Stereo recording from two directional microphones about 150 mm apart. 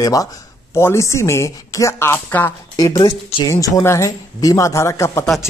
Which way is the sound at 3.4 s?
20° left (ahead or behind).